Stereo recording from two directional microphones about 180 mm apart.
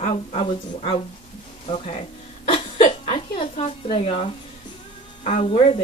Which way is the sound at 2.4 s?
30° left (ahead or behind).